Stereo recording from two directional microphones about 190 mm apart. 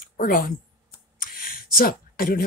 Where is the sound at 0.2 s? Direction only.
50° left (ahead or behind).